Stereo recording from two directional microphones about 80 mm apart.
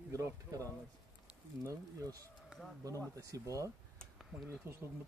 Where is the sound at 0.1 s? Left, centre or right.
Right.